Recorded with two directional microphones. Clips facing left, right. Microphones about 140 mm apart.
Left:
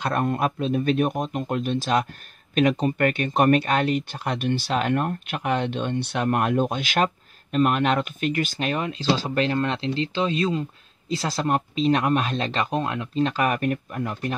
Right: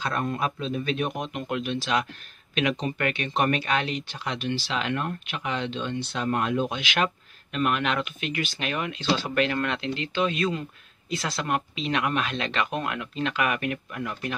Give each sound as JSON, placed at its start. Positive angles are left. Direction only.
{"t": 0.0, "sound": "speech", "side_deg": 55}